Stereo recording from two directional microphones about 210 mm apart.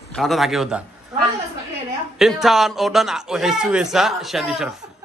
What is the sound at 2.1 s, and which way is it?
A man's voice, centre (ahead or behind).